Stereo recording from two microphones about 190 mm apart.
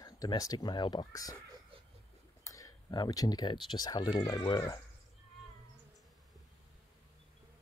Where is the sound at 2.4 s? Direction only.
15° left (ahead or behind).